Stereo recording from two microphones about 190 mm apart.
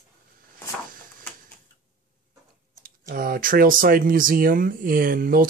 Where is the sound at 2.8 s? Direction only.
50° right (ahead or behind).